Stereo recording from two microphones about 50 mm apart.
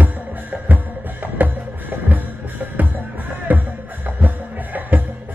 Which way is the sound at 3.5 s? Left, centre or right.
Right.